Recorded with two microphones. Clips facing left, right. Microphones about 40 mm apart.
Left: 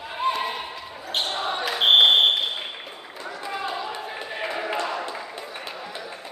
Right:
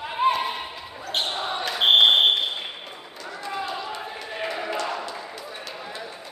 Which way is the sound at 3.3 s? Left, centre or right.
Centre.